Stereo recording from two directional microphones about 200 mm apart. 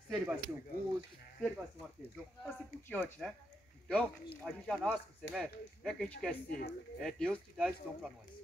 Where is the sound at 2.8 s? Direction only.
10° left (ahead or behind).